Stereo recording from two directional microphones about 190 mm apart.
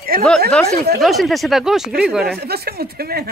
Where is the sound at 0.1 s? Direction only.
50° right (ahead or behind).